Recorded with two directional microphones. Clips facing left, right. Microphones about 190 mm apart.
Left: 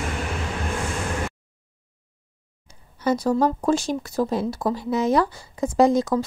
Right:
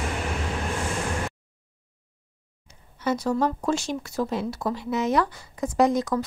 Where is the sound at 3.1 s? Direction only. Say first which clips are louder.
Left 4 dB; 40° left (ahead or behind).